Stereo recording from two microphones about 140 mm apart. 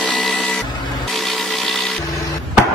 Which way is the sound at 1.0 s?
Centre (ahead or behind).